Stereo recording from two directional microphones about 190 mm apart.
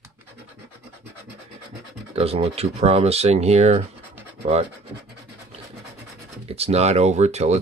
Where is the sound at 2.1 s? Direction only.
30° right (ahead or behind).